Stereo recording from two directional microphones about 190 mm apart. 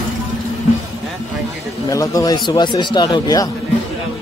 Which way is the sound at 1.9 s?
20° left (ahead or behind).